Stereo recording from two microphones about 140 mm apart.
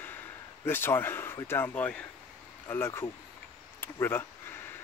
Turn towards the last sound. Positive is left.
turn(degrees=15)  # may be behind; listen again after turning